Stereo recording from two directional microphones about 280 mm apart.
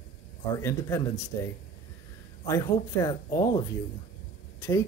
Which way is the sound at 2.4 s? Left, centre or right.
Centre.